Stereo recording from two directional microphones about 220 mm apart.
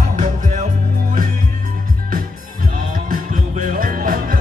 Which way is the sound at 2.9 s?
40° right (ahead or behind).